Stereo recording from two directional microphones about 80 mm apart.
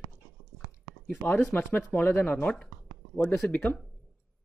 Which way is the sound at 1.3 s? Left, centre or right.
Left.